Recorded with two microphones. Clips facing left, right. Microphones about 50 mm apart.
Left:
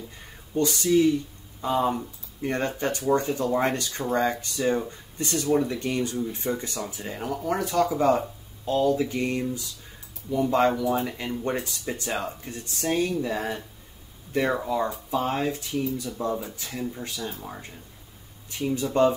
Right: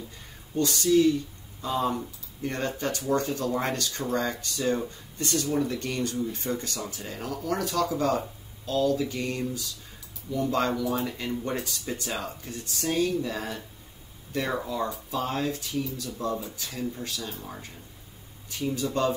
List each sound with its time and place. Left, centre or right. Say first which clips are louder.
0.6 s speech: left 1 dB; left
12.8 s speech: left 1 dB; left
18.8 s speech: left 6 dB; centre